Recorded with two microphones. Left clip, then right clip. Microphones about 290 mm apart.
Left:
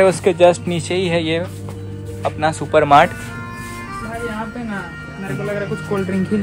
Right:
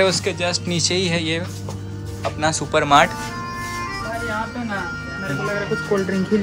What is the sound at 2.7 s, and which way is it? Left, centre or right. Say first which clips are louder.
Speech: left 4 dB; centre.